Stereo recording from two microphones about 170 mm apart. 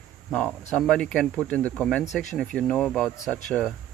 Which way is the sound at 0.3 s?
5° left (ahead or behind).